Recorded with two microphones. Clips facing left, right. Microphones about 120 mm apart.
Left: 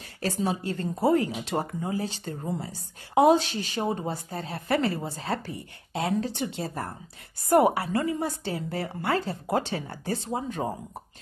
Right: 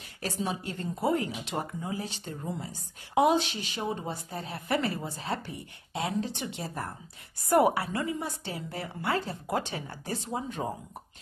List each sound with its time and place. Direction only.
0.2 s speech: 35° left (ahead or behind)
7.9 s a woman's voice: 50° left (ahead or behind)
8.5 s speech: 35° left (ahead or behind)